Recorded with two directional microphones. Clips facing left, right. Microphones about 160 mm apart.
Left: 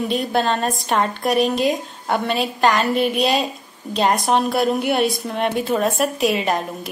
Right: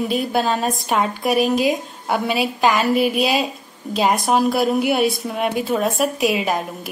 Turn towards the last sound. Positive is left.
turn(degrees=-5)  # may be behind; listen again after turning